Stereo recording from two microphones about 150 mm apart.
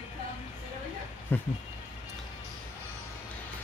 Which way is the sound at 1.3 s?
15° left (ahead or behind).